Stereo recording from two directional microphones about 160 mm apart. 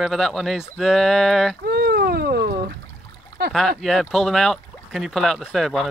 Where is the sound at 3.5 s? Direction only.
Centre (ahead or behind).